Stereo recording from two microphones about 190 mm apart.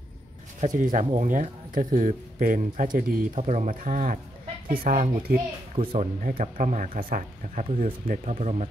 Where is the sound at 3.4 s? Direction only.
40° right (ahead or behind).